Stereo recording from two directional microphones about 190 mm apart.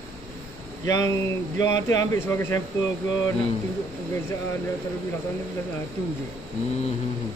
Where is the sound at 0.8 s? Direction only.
15° left (ahead or behind).